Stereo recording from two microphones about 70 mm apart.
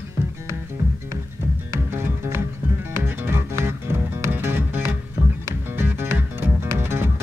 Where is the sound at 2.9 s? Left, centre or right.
Right.